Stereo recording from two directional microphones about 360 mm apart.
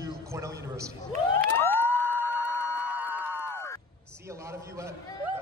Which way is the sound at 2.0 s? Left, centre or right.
Centre.